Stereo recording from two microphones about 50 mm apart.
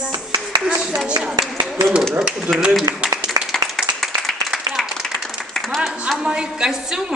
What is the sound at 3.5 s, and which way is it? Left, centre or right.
Clapping, centre.